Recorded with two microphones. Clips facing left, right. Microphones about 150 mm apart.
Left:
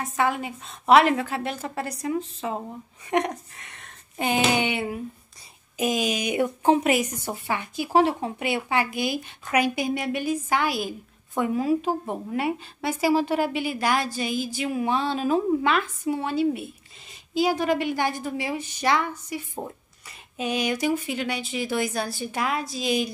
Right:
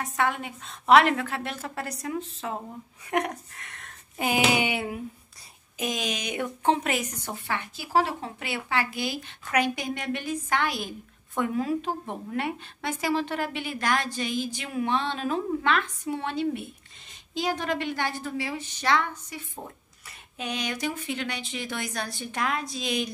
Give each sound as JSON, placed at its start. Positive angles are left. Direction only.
{"t": 0.0, "sound": "a woman's voice", "side_deg": 0}
{"t": 5.8, "sound": "a woman's voice", "side_deg": 5}